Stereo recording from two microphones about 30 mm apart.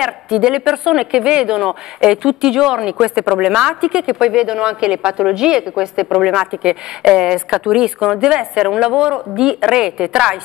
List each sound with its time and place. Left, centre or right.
0.0 s a woman's voice: right
0.7 s speech: centre
1.1 s a woman's voice: right
6.0 s speech: centre
6.6 s a woman's voice: right